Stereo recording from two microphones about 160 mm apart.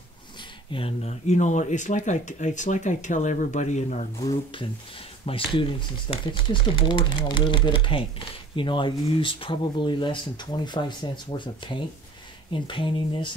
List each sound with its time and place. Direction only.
0.7 s speech: 35° left (ahead or behind)
4.2 s speech: 30° left (ahead or behind)